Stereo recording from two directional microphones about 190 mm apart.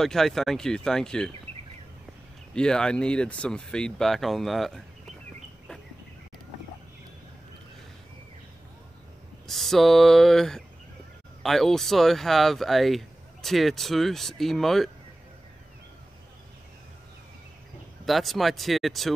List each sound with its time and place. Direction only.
0.0 s speech: centre (ahead or behind)
2.5 s speech: 5° left (ahead or behind)
9.5 s speech: centre (ahead or behind)
18.0 s speech: centre (ahead or behind)